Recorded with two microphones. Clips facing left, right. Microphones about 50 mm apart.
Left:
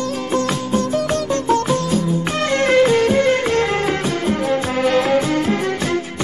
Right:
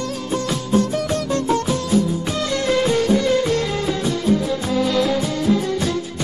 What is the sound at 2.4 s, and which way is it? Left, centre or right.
Music, left.